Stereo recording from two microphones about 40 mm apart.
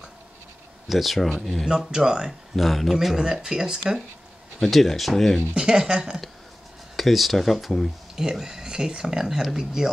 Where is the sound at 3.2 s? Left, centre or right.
Centre.